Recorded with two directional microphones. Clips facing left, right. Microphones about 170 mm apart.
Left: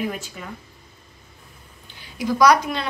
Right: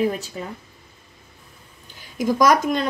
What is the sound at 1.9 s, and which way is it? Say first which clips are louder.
Speech: right 2 dB; 45° right (ahead or behind).